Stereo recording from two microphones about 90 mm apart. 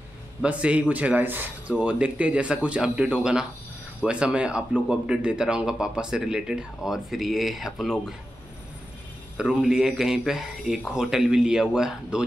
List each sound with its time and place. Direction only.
0.4 s speech: 15° right (ahead or behind)
9.4 s speech: 10° right (ahead or behind)